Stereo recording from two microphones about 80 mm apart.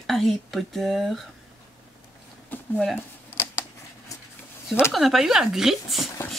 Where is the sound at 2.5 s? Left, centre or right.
Left.